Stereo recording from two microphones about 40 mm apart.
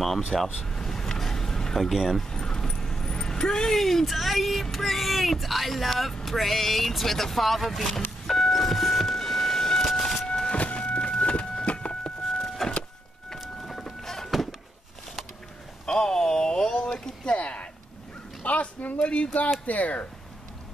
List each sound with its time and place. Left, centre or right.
0.3 s speech: centre
0.7 s vehicle: centre
1.8 s speech: centre
2.3 s keys jangling: centre
2.8 s vehicle: centre
3.7 s speech: centre
8.3 s vehicle: centre
10.2 s a sound: centre
10.7 s vehicle: left
13.7 s a sound: centre
15.8 s a sound: left
17.4 s a sound: left
19.6 s speech: left